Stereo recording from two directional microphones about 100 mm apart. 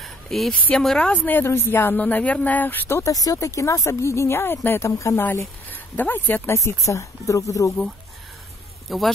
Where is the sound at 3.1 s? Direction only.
35° left (ahead or behind).